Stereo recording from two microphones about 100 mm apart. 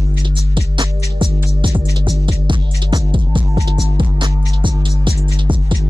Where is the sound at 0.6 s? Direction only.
55° right (ahead or behind).